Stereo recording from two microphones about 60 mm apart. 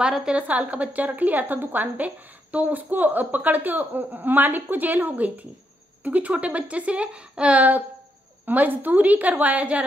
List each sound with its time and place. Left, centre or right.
0.0 s a woman's voice: centre